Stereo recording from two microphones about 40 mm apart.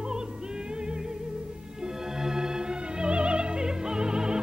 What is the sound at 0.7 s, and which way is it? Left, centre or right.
Music, right.